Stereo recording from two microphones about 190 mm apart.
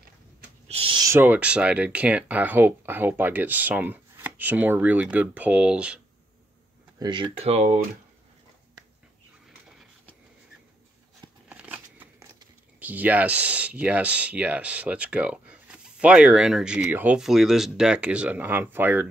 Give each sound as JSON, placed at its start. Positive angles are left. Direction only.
{"t": 0.7, "sound": "speech", "side_deg": -30}
{"t": 7.0, "sound": "speech", "side_deg": -25}
{"t": 11.4, "sound": "scissors", "side_deg": -10}
{"t": 12.8, "sound": "speech", "side_deg": -10}